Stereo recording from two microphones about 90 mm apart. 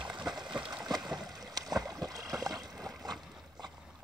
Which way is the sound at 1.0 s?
5° right (ahead or behind).